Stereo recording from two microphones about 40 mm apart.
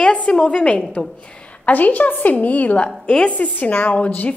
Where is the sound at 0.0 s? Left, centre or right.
Left.